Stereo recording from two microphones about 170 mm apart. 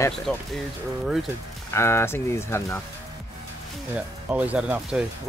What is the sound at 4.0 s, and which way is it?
Speech, 10° right (ahead or behind).